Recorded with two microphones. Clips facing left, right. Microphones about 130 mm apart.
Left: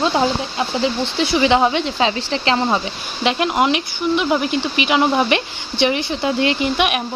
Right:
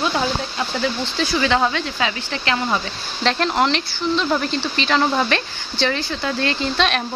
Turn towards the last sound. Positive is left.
turn(degrees=15)  # may be behind; listen again after turning